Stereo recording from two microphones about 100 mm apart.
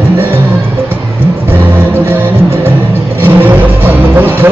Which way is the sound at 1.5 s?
25° right (ahead or behind).